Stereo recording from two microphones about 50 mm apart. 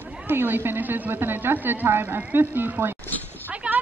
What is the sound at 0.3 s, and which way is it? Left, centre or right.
A woman's voice, right.